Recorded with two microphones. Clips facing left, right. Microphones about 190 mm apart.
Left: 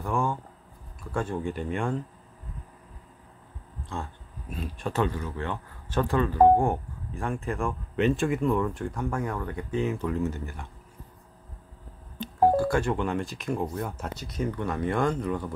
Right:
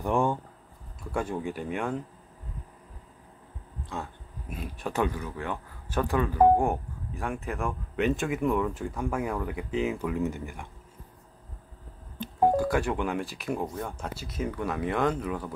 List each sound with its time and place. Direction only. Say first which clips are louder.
0.0 s speech: right 3 dB; 20° right (ahead or behind)
1.1 s speech: left 1 dB; 10° right (ahead or behind)
3.9 s speech: left 1 dB; 5° right (ahead or behind)
12.7 s speech: left 1 dB; 10° right (ahead or behind)